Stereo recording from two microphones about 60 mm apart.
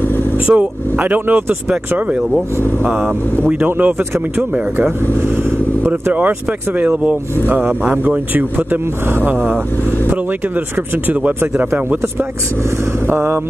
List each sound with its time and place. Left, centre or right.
0.5 s speech: right
2.0 s speech: right
6.1 s speech: right
11.1 s speech: right
13.0 s a sound: right